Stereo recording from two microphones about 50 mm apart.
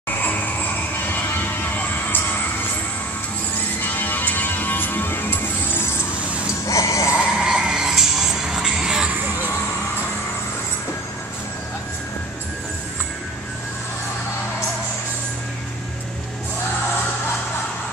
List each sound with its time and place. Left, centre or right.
0.2 s vehicle: left
3.8 s music: left
6.7 s music: left
7.3 s music: centre